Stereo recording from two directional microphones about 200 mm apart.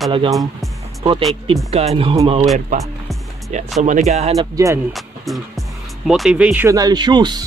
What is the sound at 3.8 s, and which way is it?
Speech, 35° right (ahead or behind).